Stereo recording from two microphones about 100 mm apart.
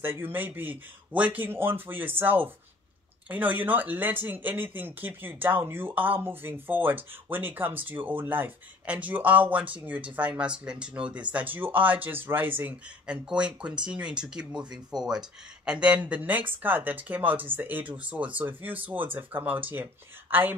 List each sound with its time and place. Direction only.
0.0 s speech: 20° right (ahead or behind)